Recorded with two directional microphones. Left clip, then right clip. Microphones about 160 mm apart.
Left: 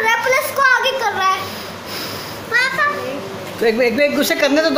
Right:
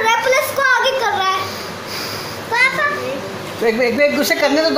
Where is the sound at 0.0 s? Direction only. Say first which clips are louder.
Right 1 dB; 30° left (ahead or behind).